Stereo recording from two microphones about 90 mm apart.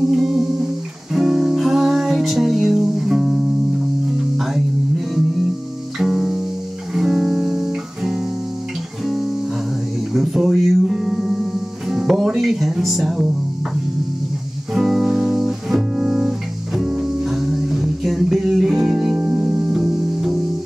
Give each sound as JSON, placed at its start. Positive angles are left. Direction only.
{"t": 0.1, "sound": "music", "side_deg": -5}
{"t": 5.9, "sound": "music", "side_deg": -5}
{"t": 10.1, "sound": "music", "side_deg": 0}
{"t": 11.9, "sound": "speech", "side_deg": -5}
{"t": 14.7, "sound": "music", "side_deg": -5}
{"t": 19.1, "sound": "music", "side_deg": -25}
{"t": 19.7, "sound": "music", "side_deg": -10}